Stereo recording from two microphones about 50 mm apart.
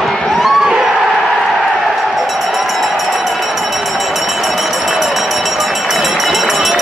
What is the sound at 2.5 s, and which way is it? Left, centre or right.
Run, centre.